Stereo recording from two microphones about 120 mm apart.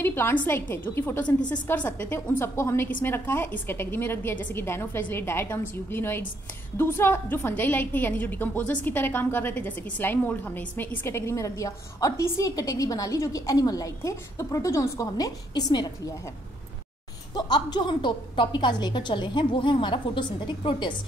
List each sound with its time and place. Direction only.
0.0 s a woman's voice: 20° left (ahead or behind); by 15.9 s 35° left (ahead or behind)
17.3 s a woman's voice: 35° left (ahead or behind)